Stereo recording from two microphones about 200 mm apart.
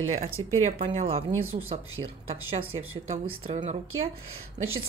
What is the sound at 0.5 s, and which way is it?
Speech, 35° right (ahead or behind).